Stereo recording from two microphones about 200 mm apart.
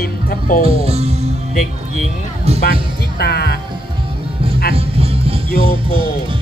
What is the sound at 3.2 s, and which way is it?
Speech, 55° left (ahead or behind).